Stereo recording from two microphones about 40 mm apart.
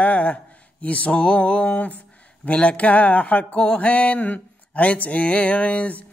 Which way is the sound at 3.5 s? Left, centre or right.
Left.